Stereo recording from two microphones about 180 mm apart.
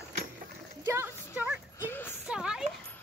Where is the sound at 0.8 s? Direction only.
15° right (ahead or behind).